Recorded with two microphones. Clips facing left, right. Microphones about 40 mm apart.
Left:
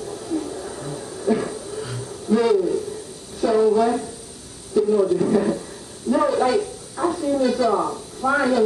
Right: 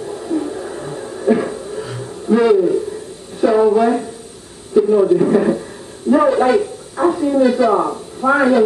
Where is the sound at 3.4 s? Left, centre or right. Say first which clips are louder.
Right 5 dB; right.